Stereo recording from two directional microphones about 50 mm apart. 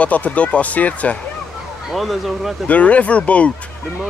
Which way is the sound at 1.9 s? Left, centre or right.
Centre.